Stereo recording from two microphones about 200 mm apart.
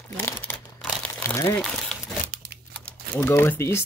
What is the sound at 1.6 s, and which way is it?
Speech, centre (ahead or behind).